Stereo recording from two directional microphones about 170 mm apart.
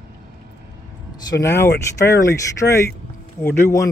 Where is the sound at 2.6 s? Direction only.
20° left (ahead or behind).